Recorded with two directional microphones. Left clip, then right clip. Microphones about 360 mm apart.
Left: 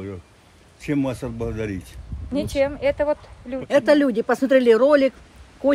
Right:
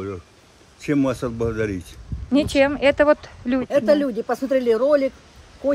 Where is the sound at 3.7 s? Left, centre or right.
Left.